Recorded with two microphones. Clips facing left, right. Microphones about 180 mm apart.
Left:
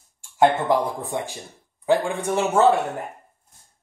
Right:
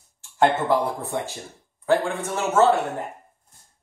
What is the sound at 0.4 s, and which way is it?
Speech, 15° left (ahead or behind).